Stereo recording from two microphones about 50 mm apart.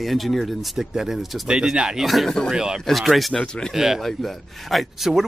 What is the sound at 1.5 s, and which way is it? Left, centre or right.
Speech, centre.